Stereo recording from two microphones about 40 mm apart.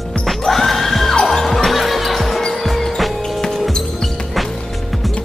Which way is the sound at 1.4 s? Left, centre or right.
Centre.